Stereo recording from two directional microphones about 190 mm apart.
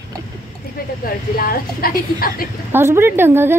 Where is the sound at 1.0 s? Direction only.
50° left (ahead or behind).